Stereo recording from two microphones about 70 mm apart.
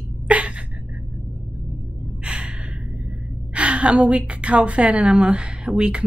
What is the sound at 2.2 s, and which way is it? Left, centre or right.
Gasp, centre.